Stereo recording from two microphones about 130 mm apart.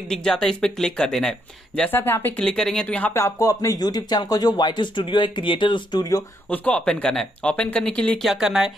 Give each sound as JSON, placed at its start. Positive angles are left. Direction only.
{"t": 0.1, "sound": "speech", "side_deg": 5}
{"t": 1.8, "sound": "speech", "side_deg": 15}
{"t": 3.1, "sound": "speech", "side_deg": 20}
{"t": 6.5, "sound": "speech", "side_deg": 10}
{"t": 8.3, "sound": "speech", "side_deg": -5}